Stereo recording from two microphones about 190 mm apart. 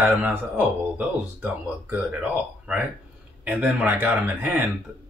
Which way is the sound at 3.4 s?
5° right (ahead or behind).